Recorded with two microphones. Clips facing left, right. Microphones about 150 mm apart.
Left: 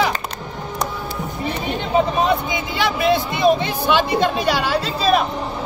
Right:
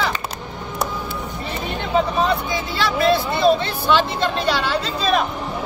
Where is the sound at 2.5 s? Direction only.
15° left (ahead or behind).